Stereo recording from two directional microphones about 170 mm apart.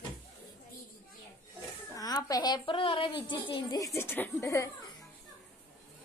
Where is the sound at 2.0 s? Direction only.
20° left (ahead or behind).